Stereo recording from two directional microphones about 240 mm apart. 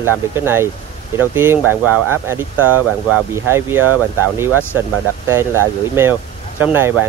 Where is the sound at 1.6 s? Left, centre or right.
Right.